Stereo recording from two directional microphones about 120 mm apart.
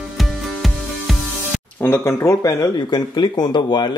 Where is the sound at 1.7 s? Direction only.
15° left (ahead or behind).